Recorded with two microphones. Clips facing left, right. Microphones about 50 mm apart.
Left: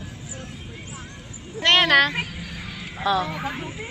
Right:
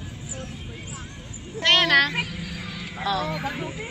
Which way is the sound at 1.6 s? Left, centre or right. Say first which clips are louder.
Left 2 dB; centre.